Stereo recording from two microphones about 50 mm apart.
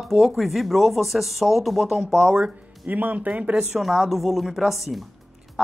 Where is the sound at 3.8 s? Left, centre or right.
Centre.